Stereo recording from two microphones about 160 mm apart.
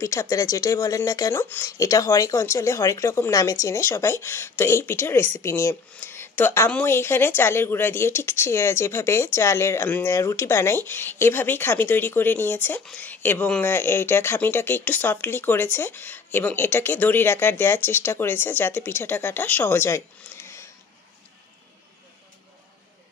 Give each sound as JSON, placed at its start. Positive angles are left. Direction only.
{"t": 0.0, "sound": "speech", "side_deg": 15}